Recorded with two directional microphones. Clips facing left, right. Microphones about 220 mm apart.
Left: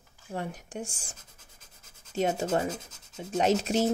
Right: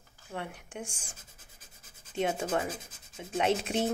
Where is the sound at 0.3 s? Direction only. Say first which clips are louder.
Left 4 dB; 35° left (ahead or behind).